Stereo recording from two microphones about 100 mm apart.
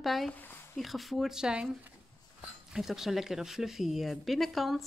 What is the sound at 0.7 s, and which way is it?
Speech, centre (ahead or behind).